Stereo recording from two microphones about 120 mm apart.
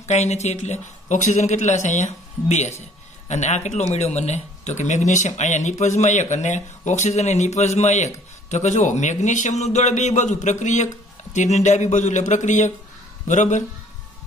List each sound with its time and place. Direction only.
0.0 s a man's voice: 65° left (ahead or behind); by 13.7 s 90° left